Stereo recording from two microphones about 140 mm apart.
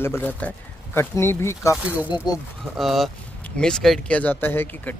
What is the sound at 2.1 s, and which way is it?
Speech, 30° left (ahead or behind).